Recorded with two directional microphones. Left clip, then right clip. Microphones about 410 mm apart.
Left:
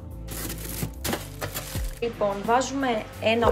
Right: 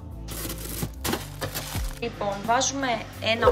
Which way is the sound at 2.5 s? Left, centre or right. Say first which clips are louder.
Right 2 dB; centre.